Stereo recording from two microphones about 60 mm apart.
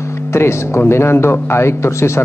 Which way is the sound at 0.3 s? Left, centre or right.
Left.